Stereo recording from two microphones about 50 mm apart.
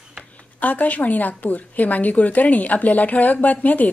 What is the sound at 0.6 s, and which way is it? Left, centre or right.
A woman's voice, left.